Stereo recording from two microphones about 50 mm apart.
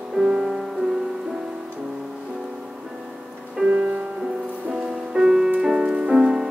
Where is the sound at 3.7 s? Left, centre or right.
Centre.